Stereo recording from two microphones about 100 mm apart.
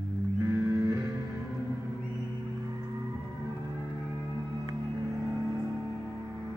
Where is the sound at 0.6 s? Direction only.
35° right (ahead or behind).